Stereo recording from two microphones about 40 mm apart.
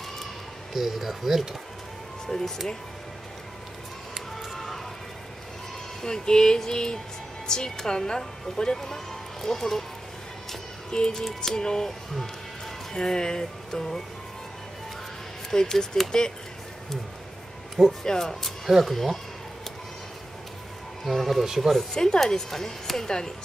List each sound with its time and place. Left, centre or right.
0.7 s speech: centre
2.2 s speech: centre
6.0 s speech: centre
10.9 s music: centre
11.2 s speech: centre
15.5 s speech: centre
18.0 s speech: centre
18.7 s speech: centre
21.0 s speech: centre
21.9 s speech: centre